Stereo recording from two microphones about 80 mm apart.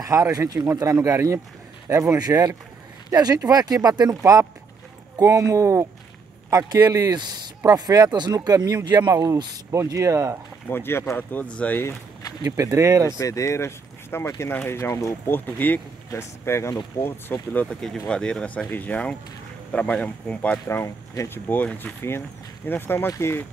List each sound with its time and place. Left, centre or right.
0.0 s speech: right
3.1 s speech: right
4.2 s speech: right
8.8 s speech: right
9.1 s speech: right
10.7 s speech: left
12.4 s speech: right
13.2 s speech: left
16.1 s speech: left
17.3 s speech: centre
17.6 s speech: centre
20.6 s speech: left
21.3 s speech: left